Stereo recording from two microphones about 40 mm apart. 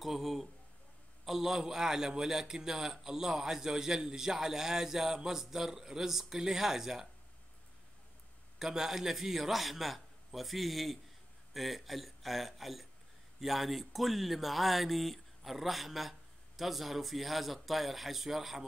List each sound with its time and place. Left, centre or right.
0.0 s a man's voice: centre
8.5 s speech: centre